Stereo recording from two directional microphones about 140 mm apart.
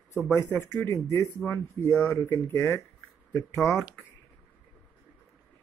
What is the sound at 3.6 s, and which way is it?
Speech, centre (ahead or behind).